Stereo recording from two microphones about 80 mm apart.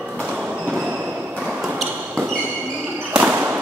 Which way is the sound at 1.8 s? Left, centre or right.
Right.